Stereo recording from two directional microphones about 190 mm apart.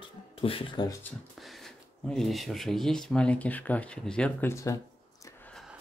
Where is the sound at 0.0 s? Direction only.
30° left (ahead or behind).